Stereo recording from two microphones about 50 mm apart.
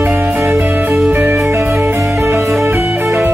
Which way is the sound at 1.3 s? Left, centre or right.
Right.